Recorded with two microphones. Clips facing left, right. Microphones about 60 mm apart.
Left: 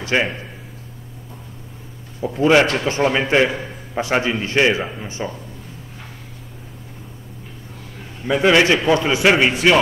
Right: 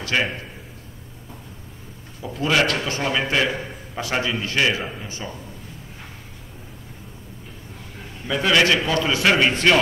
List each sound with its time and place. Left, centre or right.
0.0 s a man's voice: left
2.2 s a man's voice: left
8.3 s a man's voice: left
9.5 s a man's voice: centre